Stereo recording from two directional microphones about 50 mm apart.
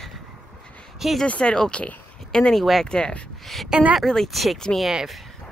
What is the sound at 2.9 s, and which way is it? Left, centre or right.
Speech, centre.